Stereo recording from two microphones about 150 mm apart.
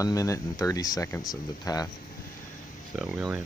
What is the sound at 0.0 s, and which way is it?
Speech, 20° left (ahead or behind).